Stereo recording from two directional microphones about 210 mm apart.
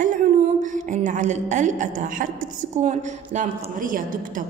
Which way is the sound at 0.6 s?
35° right (ahead or behind).